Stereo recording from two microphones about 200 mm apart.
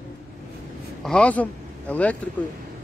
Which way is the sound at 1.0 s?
5° left (ahead or behind).